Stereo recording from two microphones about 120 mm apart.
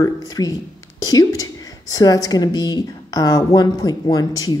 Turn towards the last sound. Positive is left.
turn(degrees=30)  # may be behind; listen again after turning